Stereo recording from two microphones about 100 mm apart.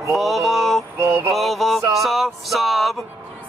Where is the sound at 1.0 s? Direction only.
20° right (ahead or behind).